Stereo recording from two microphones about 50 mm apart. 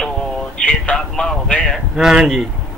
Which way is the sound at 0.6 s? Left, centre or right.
Centre.